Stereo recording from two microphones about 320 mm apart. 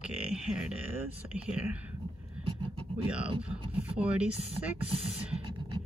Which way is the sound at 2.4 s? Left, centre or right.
Right.